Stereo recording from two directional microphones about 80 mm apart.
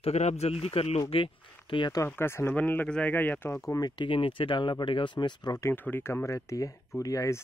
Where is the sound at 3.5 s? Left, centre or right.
Left.